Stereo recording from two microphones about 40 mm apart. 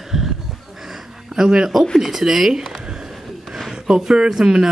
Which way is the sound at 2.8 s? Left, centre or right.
Centre.